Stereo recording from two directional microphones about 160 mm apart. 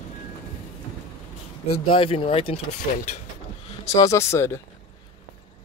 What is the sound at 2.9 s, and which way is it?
Speech, 55° left (ahead or behind).